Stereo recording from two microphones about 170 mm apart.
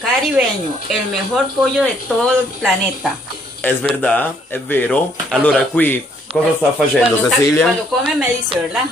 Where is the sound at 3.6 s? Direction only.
10° left (ahead or behind).